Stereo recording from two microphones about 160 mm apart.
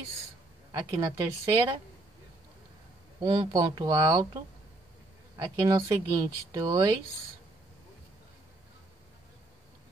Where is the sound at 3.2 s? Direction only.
30° right (ahead or behind).